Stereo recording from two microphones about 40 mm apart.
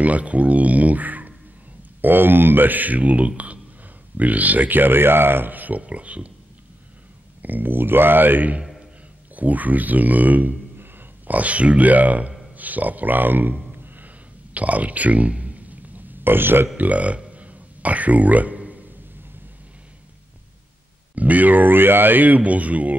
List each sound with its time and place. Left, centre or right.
0.0 s speech: right
2.0 s speech: right
7.4 s a man's voice: right
11.3 s speech: right
12.5 s a sound: right
16.3 s speech: right
16.7 s a man's voice: right
21.1 s speech: right